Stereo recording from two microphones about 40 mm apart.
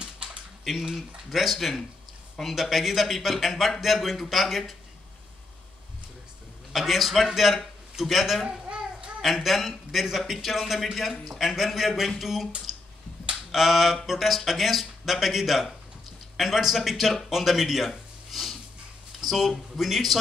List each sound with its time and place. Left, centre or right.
0.9 s a man's voice: centre
6.7 s a man's voice: centre
8.6 s a sound: right
9.2 s a man's voice: centre
12.7 s computer keyboard: centre
13.5 s a man's voice: centre